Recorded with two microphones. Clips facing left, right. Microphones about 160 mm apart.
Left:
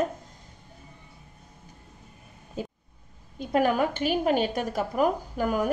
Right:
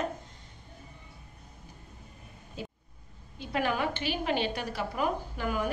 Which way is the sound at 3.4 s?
45° left (ahead or behind).